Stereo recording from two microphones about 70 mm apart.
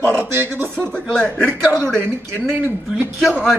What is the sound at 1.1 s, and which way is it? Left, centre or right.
Speech, centre.